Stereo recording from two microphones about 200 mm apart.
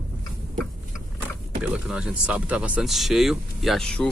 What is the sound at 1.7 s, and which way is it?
Speech, 5° right (ahead or behind).